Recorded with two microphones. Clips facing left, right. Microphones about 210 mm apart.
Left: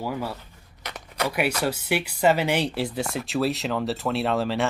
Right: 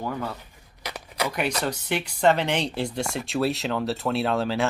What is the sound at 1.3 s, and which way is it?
Speech, 5° left (ahead or behind).